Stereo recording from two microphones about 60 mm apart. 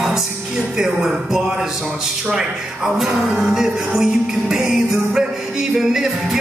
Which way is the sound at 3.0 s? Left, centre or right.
Centre.